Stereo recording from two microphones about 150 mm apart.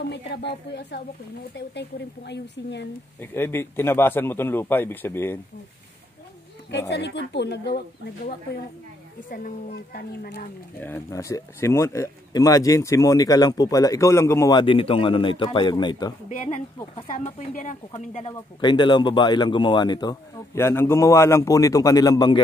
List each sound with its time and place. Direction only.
3.2 s a man's voice: 15° left (ahead or behind)
7.4 s speech: 90° left
9.3 s a woman's voice: 65° left (ahead or behind); by 10.5 s 90° left
10.8 s speech: 15° left (ahead or behind)
16.3 s speech: 55° left (ahead or behind)
18.6 s speech: 30° left (ahead or behind)
20.5 s speech: 15° left (ahead or behind)